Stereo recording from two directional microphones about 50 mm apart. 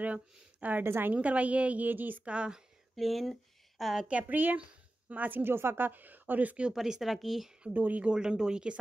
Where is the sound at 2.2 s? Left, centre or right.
Centre.